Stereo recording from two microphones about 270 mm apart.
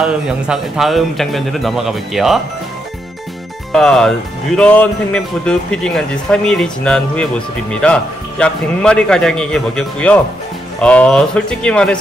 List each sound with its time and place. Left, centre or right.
0.0 s speech: centre
3.7 s speech: centre